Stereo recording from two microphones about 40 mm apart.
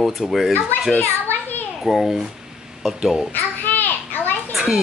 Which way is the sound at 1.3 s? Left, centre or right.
Left.